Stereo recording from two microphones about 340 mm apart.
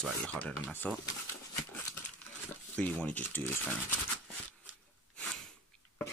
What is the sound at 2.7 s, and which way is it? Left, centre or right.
Speech, centre.